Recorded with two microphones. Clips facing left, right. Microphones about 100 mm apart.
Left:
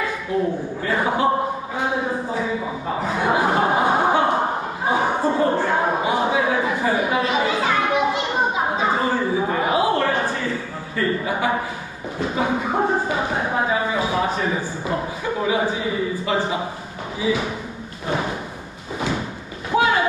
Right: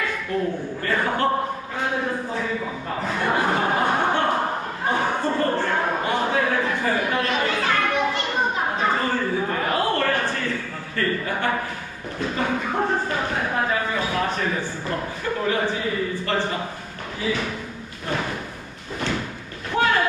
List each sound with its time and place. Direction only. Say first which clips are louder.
0.8 s speech: left 2 dB; 10° left (ahead or behind)
1.8 s chuckle: left 2 dB; 10° left (ahead or behind)
8.7 s a sound: left 2 dB; 10° left (ahead or behind)
15.4 s a man's voice: left 2 dB; 10° left (ahead or behind)
18.0 s a sound: left 3 dB; 15° left (ahead or behind)
19.7 s boat: left 2 dB; 10° left (ahead or behind)